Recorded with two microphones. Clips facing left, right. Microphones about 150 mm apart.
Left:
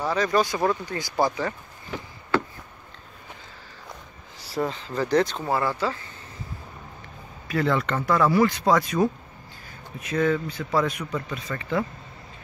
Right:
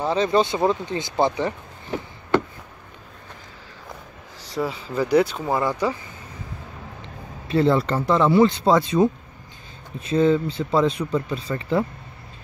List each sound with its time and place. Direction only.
0.0 s speech: 25° right (ahead or behind)
4.4 s a sound: 5° left (ahead or behind)
4.6 s speech: 10° right (ahead or behind)
7.4 s speech: 30° right (ahead or behind)